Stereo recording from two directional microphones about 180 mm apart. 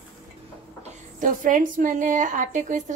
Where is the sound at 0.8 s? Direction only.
45° right (ahead or behind).